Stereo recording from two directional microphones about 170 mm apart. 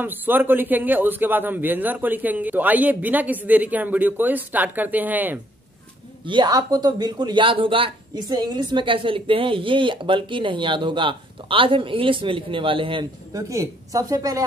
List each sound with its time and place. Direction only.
0.0 s a man's voice: 10° right (ahead or behind)
6.2 s speech: 25° right (ahead or behind)